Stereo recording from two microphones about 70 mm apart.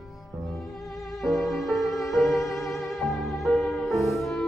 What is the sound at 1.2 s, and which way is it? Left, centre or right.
Violin, centre.